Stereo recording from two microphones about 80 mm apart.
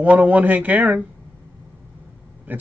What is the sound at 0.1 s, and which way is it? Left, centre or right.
Speech, centre.